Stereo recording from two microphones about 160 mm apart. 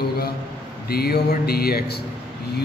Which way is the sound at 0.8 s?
75° left (ahead or behind).